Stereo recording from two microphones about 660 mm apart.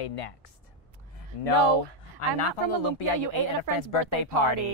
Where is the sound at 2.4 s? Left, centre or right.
Left.